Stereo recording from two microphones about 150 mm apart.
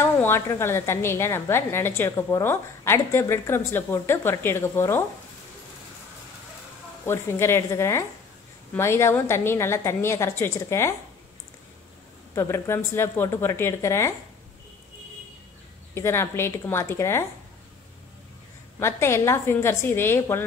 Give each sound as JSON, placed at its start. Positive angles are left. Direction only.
{"t": 0.0, "sound": "speech", "side_deg": 15}
{"t": 7.1, "sound": "speech", "side_deg": 15}
{"t": 12.4, "sound": "speech", "side_deg": 20}
{"t": 15.9, "sound": "speech", "side_deg": 15}
{"t": 18.8, "sound": "speech", "side_deg": 15}